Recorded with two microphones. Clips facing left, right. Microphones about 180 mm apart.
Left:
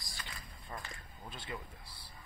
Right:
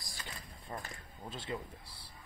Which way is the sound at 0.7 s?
25° right (ahead or behind).